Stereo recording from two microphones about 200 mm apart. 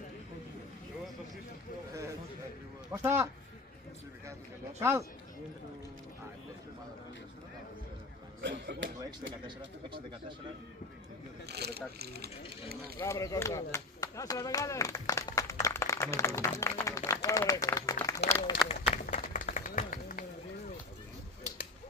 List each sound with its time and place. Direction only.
2.9 s speech: 15° right (ahead or behind)
4.7 s speech: 15° right (ahead or behind)
8.4 s speech: 60° right (ahead or behind)
9.8 s speech: 25° right (ahead or behind)
11.4 s speech: 55° right (ahead or behind)
13.0 s speech: 15° left (ahead or behind)
18.7 s a sound: 40° left (ahead or behind)